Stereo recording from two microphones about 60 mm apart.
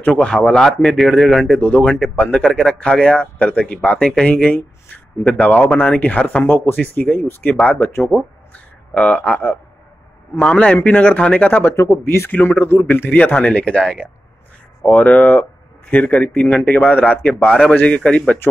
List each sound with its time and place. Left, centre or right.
0.0 s a man's voice: centre
1.6 s speech: left
6.4 s speech: left
8.1 s speech: centre
8.9 s a man's voice: left
13.2 s speech: left